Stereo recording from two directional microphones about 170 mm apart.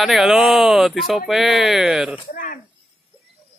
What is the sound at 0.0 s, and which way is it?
Speech, centre (ahead or behind).